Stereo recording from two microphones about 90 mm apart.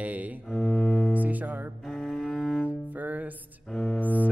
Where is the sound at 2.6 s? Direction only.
20° right (ahead or behind).